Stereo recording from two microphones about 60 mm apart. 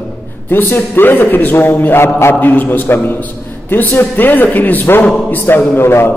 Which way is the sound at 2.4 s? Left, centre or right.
Left.